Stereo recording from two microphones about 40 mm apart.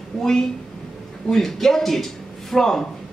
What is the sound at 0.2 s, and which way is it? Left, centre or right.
Speech, centre.